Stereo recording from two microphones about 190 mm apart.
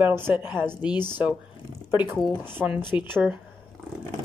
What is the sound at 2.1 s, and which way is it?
Speech, 5° left (ahead or behind).